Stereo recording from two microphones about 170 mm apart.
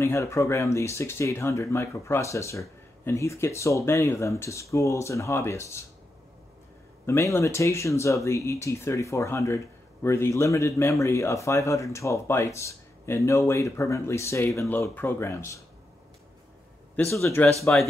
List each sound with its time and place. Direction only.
0.0 s speech: 15° left (ahead or behind)
7.1 s speech: 15° left (ahead or behind)
16.9 s speech: 15° left (ahead or behind)